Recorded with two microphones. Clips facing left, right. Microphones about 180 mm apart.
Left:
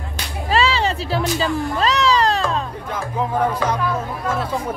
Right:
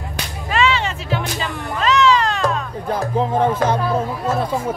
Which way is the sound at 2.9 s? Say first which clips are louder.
Right 5 dB; 30° right (ahead or behind).